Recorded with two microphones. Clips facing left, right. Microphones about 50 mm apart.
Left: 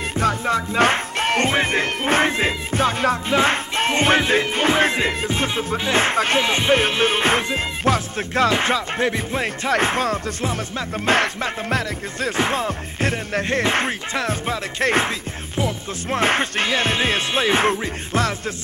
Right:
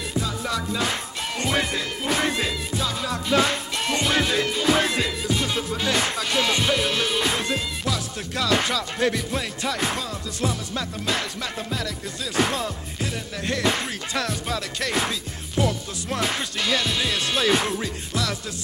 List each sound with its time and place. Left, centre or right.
0.1 s music: left
1.5 s music: left
9.4 s music: left
13.0 s music: left
17.6 s music: left